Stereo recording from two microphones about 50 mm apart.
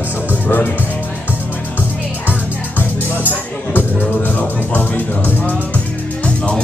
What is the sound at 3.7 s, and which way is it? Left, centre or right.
Music, left.